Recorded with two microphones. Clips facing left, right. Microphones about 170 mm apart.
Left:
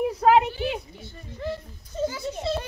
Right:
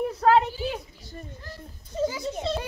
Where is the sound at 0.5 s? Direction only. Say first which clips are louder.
Left 2 dB; 65° left (ahead or behind).